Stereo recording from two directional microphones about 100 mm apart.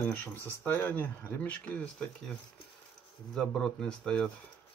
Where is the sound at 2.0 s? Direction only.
5° left (ahead or behind).